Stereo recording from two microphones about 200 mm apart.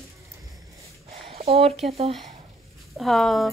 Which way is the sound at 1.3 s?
30° right (ahead or behind).